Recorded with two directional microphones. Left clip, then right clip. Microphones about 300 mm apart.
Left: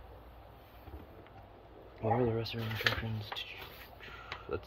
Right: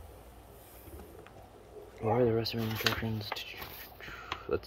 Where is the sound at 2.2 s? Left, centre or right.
Centre.